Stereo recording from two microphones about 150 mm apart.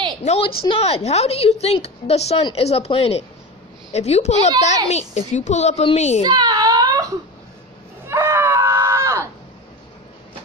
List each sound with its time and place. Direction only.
0.2 s a woman's voice: 45° left (ahead or behind)
6.2 s whimper: 25° right (ahead or behind)
8.1 s screaming: 15° right (ahead or behind)